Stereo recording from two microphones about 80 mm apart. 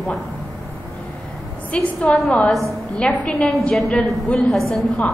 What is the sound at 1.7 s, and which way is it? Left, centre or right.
A woman's voice, centre.